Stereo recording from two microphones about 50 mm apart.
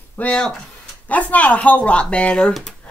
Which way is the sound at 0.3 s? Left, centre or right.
Centre.